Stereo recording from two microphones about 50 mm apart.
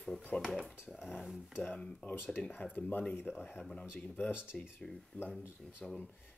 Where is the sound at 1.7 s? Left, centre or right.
Left.